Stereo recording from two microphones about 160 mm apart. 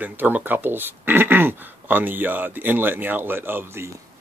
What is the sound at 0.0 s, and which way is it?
Speech, 10° right (ahead or behind).